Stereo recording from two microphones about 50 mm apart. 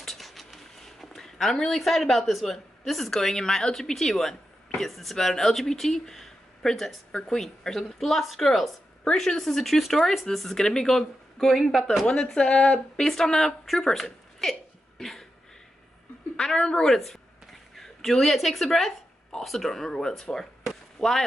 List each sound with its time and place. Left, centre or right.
0.0 s a sound: centre
1.8 s speech: centre
12.1 s speech: centre
13.0 s a woman's voice: centre
16.3 s speech: centre
16.8 s speech: centre